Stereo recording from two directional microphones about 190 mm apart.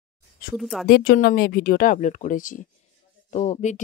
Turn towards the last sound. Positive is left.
turn(degrees=40)  # may be behind; listen again after turning